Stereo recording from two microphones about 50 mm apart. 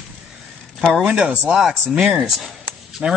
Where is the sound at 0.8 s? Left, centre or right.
Centre.